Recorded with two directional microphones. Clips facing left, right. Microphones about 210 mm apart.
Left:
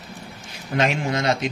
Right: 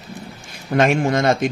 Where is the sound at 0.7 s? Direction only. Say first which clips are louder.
Right 6 dB; 50° right (ahead or behind).